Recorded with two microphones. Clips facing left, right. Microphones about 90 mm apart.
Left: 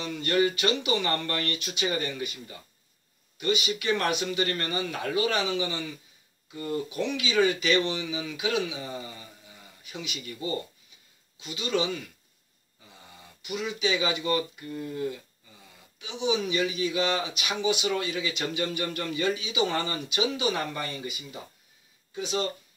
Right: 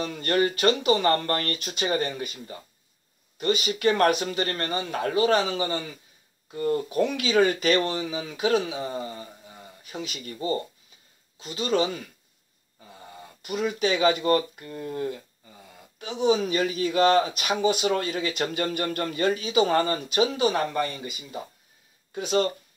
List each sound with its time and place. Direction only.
0.0 s speech: 45° right (ahead or behind)
22.1 s speech: 55° right (ahead or behind)